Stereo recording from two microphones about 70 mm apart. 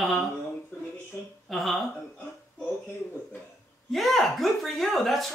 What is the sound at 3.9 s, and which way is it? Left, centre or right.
Speech, centre.